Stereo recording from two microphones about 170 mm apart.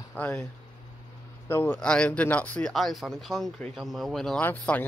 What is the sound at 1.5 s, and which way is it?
Speech, 10° left (ahead or behind).